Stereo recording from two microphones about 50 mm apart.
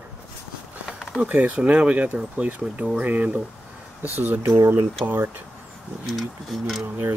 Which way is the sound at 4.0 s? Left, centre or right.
Right.